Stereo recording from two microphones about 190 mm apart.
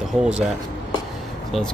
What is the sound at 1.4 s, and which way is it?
Speech, centre (ahead or behind).